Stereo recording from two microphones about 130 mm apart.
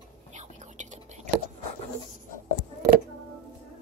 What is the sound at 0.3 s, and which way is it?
Whispering, 65° right (ahead or behind).